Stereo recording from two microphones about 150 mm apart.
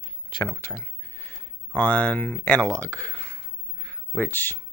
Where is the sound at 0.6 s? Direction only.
15° left (ahead or behind).